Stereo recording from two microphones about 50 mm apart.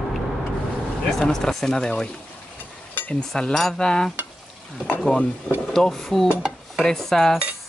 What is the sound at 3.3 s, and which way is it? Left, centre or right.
Speech, centre.